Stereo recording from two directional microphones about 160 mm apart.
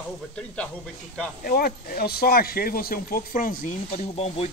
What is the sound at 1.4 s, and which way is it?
Speech, 70° left (ahead or behind).